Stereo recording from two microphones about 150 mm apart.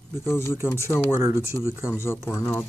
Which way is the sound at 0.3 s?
15° left (ahead or behind).